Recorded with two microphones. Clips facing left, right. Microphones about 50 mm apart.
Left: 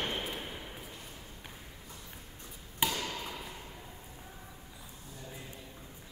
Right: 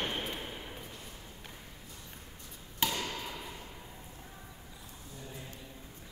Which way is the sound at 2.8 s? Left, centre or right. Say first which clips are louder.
Left 1 dB; centre.